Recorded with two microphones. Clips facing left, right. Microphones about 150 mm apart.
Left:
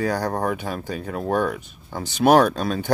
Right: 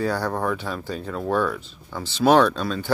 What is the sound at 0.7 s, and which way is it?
Speech, 55° left (ahead or behind).